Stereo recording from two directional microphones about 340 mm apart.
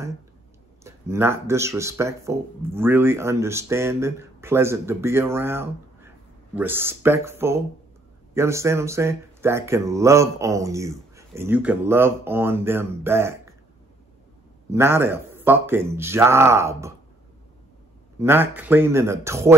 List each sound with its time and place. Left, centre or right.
0.8 s speech: centre
14.7 s speech: centre
18.2 s speech: centre